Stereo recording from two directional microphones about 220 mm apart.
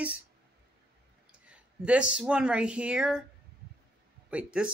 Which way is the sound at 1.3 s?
5° right (ahead or behind).